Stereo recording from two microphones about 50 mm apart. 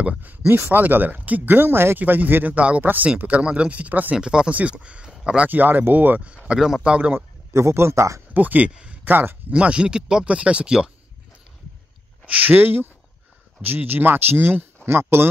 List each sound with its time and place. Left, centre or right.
0.0 s speech: right
2.0 s speech: right
4.1 s speech: centre
5.5 s speech: right
6.2 s speech: right
7.5 s speech: right
8.3 s speech: right
9.5 s speech: right
12.3 s speech: right